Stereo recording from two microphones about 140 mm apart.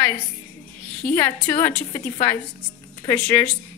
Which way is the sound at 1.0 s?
15° left (ahead or behind).